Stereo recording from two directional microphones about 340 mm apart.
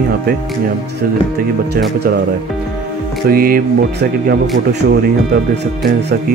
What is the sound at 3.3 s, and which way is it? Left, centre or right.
Speech, right.